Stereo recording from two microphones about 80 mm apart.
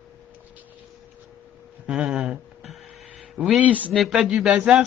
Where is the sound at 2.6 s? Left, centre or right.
Centre.